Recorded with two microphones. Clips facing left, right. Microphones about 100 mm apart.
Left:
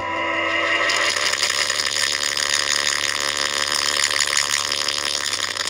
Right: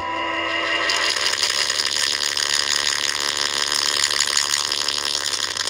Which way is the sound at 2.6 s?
25° right (ahead or behind).